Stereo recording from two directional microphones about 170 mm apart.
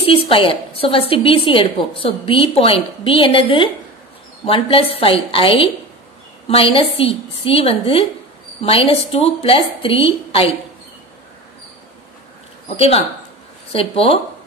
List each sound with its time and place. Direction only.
0.0 s a woman's voice: 30° left (ahead or behind)
12.6 s a woman's voice: 35° left (ahead or behind)